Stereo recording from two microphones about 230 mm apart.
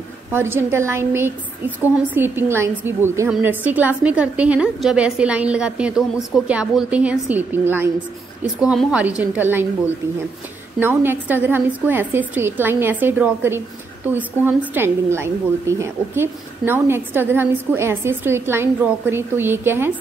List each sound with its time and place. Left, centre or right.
0.3 s a woman's voice: centre
10.8 s a woman's voice: centre